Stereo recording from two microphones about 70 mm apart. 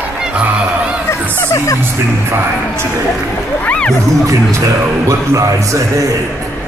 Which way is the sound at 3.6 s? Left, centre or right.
Centre.